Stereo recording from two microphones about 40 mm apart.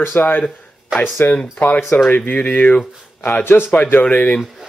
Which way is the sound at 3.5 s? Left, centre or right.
Left.